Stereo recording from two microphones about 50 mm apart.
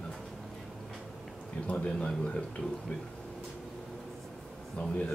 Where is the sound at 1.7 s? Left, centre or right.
Left.